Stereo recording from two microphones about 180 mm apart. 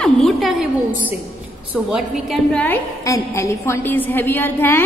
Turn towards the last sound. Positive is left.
turn(degrees=10)  # may be behind; listen again after turning